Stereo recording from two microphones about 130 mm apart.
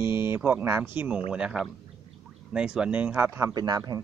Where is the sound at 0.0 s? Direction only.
20° right (ahead or behind).